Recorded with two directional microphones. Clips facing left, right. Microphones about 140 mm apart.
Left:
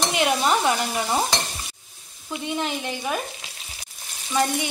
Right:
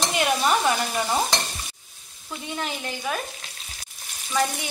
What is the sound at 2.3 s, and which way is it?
Stir, 15° left (ahead or behind).